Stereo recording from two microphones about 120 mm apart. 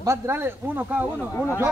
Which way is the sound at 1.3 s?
20° left (ahead or behind).